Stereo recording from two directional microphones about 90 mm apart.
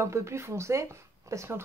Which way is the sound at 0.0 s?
30° right (ahead or behind).